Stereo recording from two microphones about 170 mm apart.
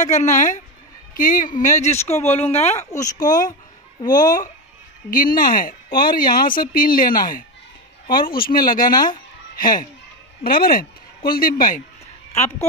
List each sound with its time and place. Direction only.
0.0 s speech: 45° left (ahead or behind)
2.9 s speech: 20° left (ahead or behind)
4.1 s speech: 50° left (ahead or behind)